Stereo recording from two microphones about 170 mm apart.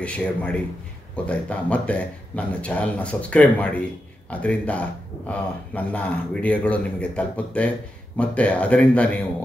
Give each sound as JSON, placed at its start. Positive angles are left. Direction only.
{"t": 0.0, "sound": "speech", "side_deg": 5}
{"t": 5.9, "sound": "speech", "side_deg": 10}